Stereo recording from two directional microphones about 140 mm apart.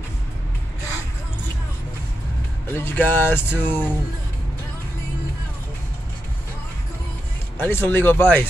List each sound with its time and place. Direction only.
2.8 s speech: 15° left (ahead or behind)
7.5 s speech: 15° left (ahead or behind)